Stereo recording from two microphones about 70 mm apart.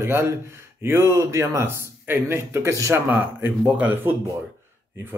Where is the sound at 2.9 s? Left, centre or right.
Right.